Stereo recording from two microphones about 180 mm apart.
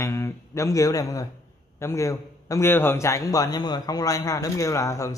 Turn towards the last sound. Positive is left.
turn(degrees=15)  # may be behind; listen again after turning